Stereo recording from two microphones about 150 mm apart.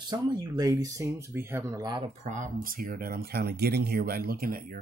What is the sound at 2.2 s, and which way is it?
Speech, 55° right (ahead or behind).